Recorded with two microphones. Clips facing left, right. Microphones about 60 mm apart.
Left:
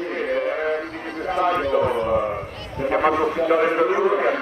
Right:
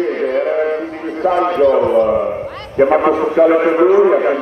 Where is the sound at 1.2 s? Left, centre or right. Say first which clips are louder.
Right 11 dB; right.